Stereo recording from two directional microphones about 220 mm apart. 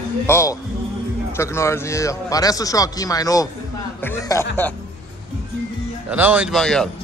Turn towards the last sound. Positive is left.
turn(degrees=5)  # may be behind; listen again after turning